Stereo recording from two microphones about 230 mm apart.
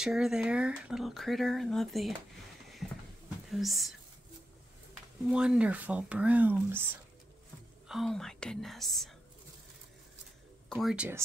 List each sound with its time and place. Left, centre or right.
0.0 s speech: centre
3.4 s speech: centre
5.2 s speech: centre
7.9 s speech: centre
10.7 s speech: centre